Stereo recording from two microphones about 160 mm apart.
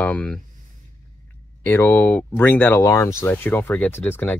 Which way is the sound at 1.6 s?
10° left (ahead or behind).